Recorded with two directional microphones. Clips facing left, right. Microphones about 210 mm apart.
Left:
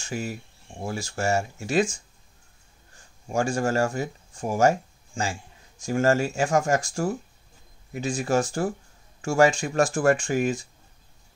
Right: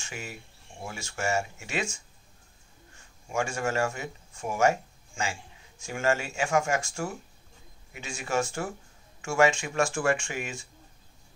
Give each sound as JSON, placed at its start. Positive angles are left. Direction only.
{"t": 0.0, "sound": "speech", "side_deg": 35}
{"t": 3.3, "sound": "speech", "side_deg": 35}